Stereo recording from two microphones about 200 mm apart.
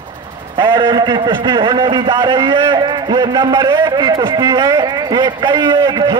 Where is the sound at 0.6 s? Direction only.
20° right (ahead or behind).